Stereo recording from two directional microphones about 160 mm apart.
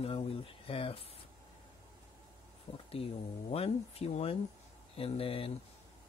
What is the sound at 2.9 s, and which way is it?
Speech, 35° left (ahead or behind).